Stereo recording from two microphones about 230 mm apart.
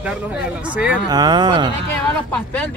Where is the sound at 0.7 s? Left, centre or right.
Centre.